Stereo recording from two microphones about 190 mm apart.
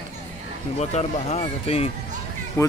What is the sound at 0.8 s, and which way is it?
Speech, 35° left (ahead or behind).